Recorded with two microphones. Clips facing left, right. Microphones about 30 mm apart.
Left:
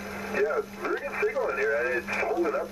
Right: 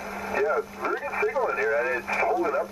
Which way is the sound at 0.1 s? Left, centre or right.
Centre.